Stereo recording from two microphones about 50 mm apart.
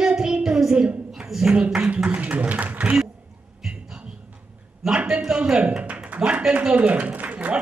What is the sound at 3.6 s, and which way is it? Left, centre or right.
Music, centre.